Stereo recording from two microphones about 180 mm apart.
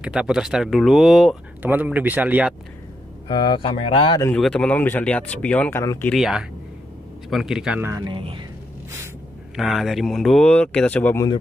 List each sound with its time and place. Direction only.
0.0 s speech: 5° right (ahead or behind)
3.3 s speech: 25° left (ahead or behind)
4.4 s speech: 5° left (ahead or behind)
6.1 s speech: 5° right (ahead or behind)
8.0 s speech: 30° right (ahead or behind)
9.6 s speech: centre (ahead or behind)